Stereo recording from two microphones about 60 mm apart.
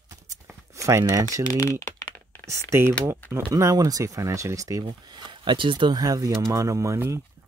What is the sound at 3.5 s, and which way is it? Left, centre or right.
Speech, right.